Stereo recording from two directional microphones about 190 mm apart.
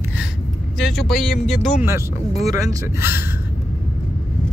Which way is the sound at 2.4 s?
15° right (ahead or behind).